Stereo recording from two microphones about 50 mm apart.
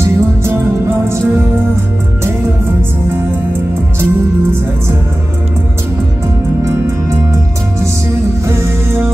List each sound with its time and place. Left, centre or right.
0.0 s music: right
4.0 s music: right